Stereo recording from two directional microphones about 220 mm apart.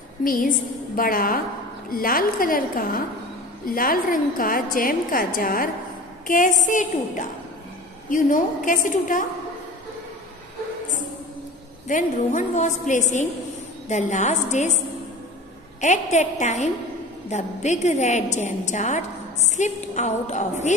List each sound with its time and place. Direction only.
0.2 s a woman's voice: 40° left (ahead or behind)
11.9 s a woman's voice: 30° left (ahead or behind)
15.8 s a woman's voice: 30° left (ahead or behind)